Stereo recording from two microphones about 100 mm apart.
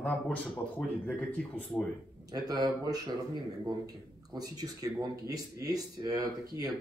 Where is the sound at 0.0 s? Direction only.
15° left (ahead or behind).